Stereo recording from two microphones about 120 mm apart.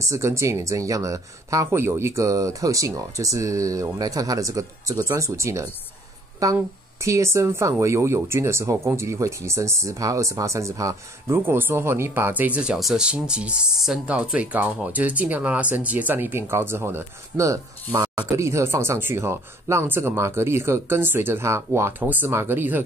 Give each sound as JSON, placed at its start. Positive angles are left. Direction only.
{"t": 0.0, "sound": "speech", "side_deg": -25}